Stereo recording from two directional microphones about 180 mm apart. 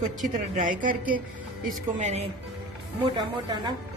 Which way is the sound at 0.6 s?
45° right (ahead or behind).